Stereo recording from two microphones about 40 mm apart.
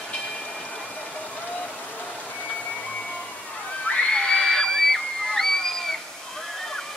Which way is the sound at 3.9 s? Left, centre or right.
Left.